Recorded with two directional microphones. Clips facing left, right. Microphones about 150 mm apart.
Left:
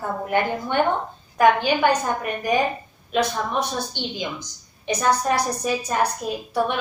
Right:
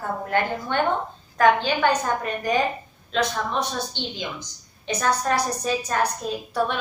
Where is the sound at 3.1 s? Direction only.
15° left (ahead or behind).